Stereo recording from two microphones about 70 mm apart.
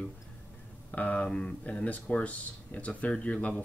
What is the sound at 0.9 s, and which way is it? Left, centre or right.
Speech, left.